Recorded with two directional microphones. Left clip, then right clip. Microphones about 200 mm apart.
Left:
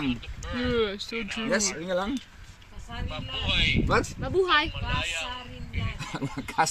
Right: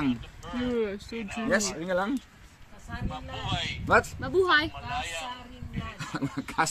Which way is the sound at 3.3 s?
50° right (ahead or behind).